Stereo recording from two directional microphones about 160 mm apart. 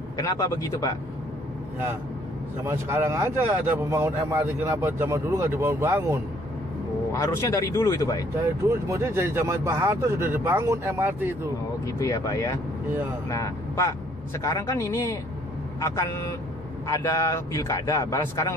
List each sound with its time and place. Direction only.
0.2 s speech: 20° left (ahead or behind)
2.6 s speech: 15° right (ahead or behind)
7.1 s speech: 20° left (ahead or behind)
8.4 s speech: 15° right (ahead or behind)
11.8 s a man's voice: 20° left (ahead or behind)